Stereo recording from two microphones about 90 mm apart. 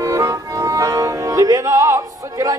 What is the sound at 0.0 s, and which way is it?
Music, 35° right (ahead or behind).